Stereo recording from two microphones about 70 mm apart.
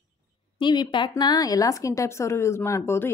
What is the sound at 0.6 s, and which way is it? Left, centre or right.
A woman's voice, left.